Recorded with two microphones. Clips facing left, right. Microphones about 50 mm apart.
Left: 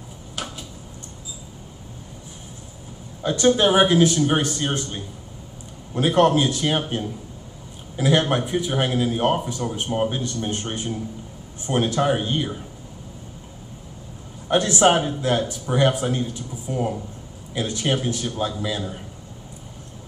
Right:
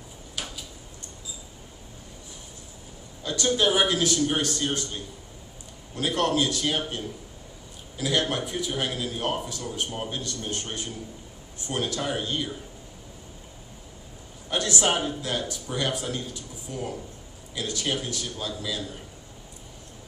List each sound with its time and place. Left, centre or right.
3.2 s a man's voice: left
14.5 s a man's voice: left